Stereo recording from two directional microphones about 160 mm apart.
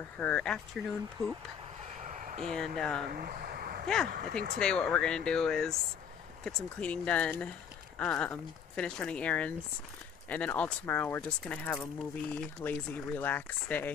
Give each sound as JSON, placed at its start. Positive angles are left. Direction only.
{"t": 0.2, "sound": "speech", "side_deg": 5}
{"t": 2.4, "sound": "speech", "side_deg": 5}
{"t": 3.1, "sound": "a sound", "side_deg": -70}
{"t": 3.8, "sound": "speech", "side_deg": 5}
{"t": 4.1, "sound": "speech", "side_deg": -65}
{"t": 4.6, "sound": "speech", "side_deg": 5}